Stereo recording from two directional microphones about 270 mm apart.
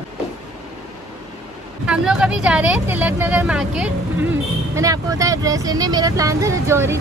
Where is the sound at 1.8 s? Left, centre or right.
Centre.